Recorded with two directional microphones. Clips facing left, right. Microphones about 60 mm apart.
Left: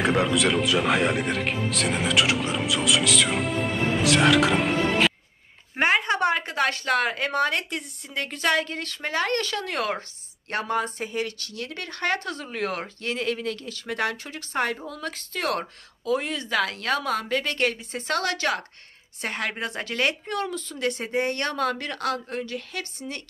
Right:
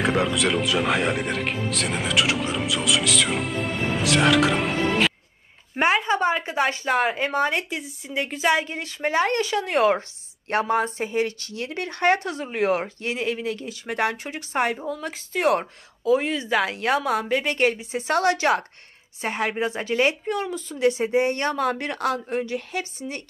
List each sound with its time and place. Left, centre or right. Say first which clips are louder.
0.0 s a woman's voice: even; centre; by 18.7 s right
19.2 s a woman's voice: right 4 dB; centre